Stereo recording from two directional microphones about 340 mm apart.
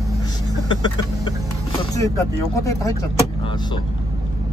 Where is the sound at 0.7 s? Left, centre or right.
Centre.